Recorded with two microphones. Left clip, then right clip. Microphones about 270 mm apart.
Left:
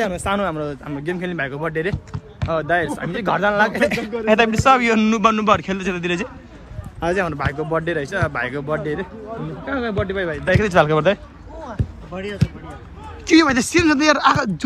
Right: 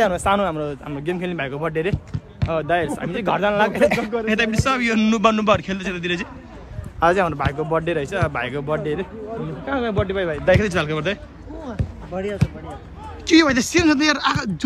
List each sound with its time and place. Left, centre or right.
0.1 s speech: centre
3.9 s speech: right
4.3 s speech: centre
7.0 s speech: centre
13.3 s speech: centre